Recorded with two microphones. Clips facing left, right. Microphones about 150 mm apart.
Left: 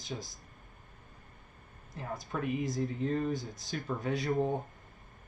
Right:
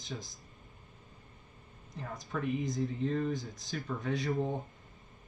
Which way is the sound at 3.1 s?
45° left (ahead or behind).